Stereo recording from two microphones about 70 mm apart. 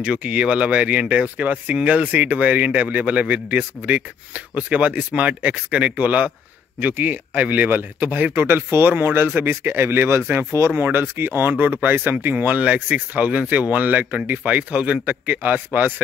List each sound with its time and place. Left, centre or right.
0.0 s speech: centre